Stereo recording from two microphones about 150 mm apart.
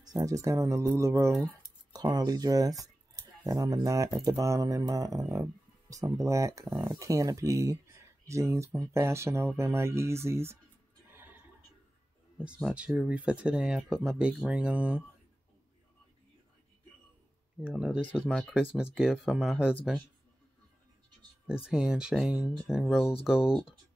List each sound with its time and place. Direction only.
0.0 s speech: 25° right (ahead or behind)
11.1 s a sound: 15° right (ahead or behind)
12.6 s speech: 10° right (ahead or behind)
17.6 s speech: 5° right (ahead or behind)
21.5 s speech: 5° right (ahead or behind)